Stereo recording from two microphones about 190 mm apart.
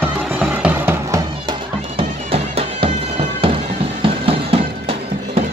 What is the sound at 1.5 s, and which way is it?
Bagpipes, 30° right (ahead or behind).